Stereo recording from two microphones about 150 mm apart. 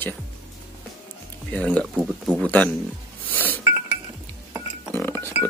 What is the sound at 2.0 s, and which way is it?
Speech, 10° right (ahead or behind).